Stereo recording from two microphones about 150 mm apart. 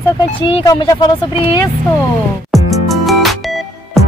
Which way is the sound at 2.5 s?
Centre (ahead or behind).